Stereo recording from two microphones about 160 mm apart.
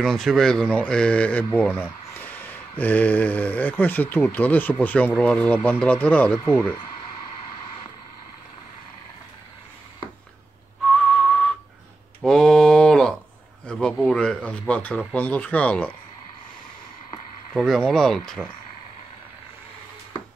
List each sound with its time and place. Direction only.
0.0 s a man's voice: 5° left (ahead or behind)
12.2 s a sound: 5° left (ahead or behind)
17.6 s speech: centre (ahead or behind)